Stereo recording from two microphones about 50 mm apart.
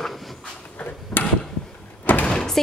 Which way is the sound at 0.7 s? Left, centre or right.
Left.